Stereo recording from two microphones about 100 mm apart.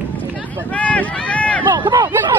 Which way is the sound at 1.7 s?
50° right (ahead or behind).